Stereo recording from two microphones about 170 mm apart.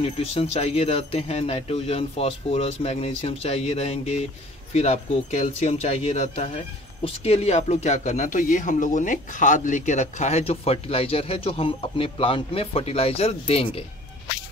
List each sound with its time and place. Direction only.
0.0 s a man's voice: 35° left (ahead or behind)